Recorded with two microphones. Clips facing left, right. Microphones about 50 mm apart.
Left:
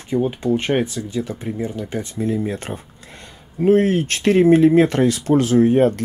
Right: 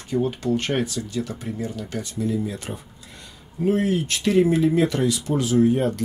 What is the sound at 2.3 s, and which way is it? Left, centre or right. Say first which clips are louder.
Speech: left 4 dB; left.